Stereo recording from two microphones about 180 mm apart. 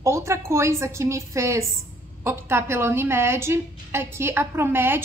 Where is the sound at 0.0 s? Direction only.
15° right (ahead or behind).